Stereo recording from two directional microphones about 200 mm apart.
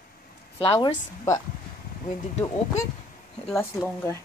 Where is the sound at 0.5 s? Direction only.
25° left (ahead or behind).